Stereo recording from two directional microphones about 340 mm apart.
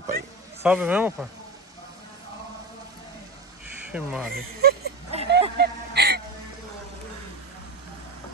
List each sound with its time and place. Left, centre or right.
0.6 s speech: centre
3.9 s speech: centre
4.6 s a sound: right